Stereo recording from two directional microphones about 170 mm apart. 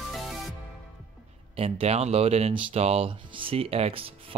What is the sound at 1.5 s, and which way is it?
Speech, 35° right (ahead or behind).